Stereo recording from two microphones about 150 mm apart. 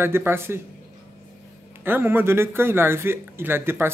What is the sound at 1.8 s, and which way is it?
Speech, 15° right (ahead or behind).